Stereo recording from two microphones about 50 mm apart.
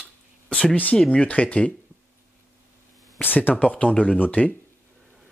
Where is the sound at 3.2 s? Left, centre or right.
Left.